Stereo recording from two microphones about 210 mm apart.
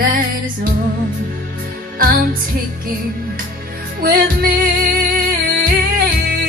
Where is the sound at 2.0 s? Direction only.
45° right (ahead or behind).